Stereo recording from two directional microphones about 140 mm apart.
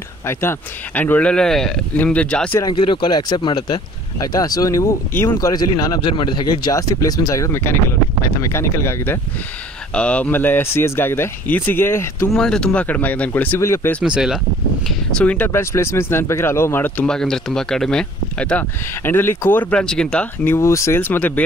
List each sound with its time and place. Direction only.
0.3 s speech: 15° left (ahead or behind)
2.6 s speech: 35° left (ahead or behind)
5.1 s speech: 15° left (ahead or behind)
5.4 s speech: 25° left (ahead or behind)
12.3 s speech: 5° left (ahead or behind)
14.0 s speech: 5° right (ahead or behind)
15.0 s speech: 10° left (ahead or behind)